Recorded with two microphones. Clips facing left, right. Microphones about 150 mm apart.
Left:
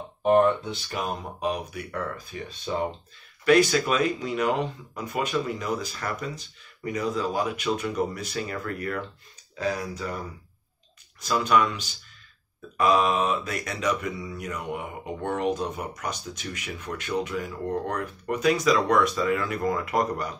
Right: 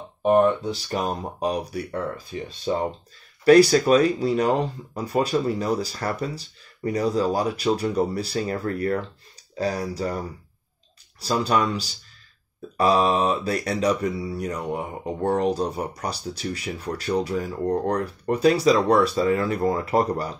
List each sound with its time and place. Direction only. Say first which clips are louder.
0.7 s speech: right 5 dB; 40° right (ahead or behind)